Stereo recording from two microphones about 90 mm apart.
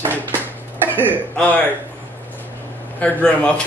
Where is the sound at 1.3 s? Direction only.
15° left (ahead or behind).